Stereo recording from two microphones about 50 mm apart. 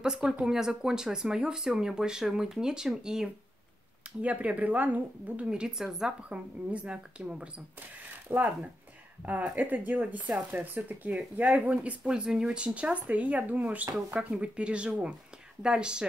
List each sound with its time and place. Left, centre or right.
0.0 s speech: centre
4.2 s a woman's voice: right
5.7 s speech: centre
6.2 s a woman's voice: right
8.3 s speech: right
9.2 s a woman's voice: right
12.1 s speech: centre
12.6 s a woman's voice: right